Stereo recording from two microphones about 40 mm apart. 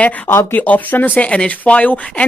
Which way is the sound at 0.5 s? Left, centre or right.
Left.